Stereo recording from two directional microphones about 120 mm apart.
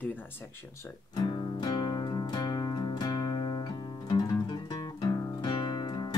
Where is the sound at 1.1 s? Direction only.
35° left (ahead or behind).